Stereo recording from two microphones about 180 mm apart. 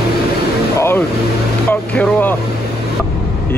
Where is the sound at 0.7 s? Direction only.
15° left (ahead or behind).